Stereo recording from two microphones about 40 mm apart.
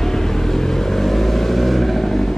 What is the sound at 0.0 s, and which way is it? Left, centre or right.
Vehicle, centre.